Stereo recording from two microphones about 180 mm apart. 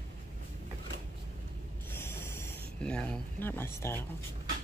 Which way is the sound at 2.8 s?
5° left (ahead or behind).